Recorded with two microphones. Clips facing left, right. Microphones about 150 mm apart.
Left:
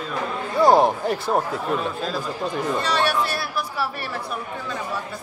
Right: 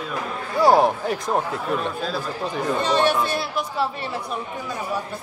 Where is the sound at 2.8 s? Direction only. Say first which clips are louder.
Right 4 dB; 20° right (ahead or behind).